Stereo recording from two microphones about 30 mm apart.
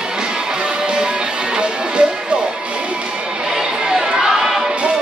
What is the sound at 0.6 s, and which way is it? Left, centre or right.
Music, right.